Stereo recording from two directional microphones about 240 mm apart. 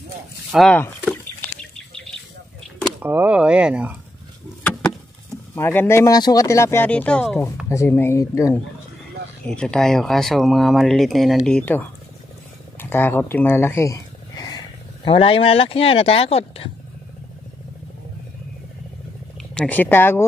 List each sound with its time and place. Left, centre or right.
0.5 s speech: centre
1.6 s bird flight: centre
2.8 s speech: centre
5.5 s speech: centre
12.7 s a sound: centre
15.0 s speech: left
19.5 s speech: centre